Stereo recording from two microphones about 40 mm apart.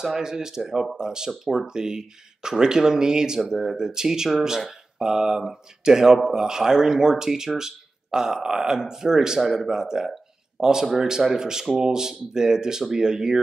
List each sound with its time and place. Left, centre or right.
0.0 s speech: centre
9.4 s speech: centre
9.7 s speech: centre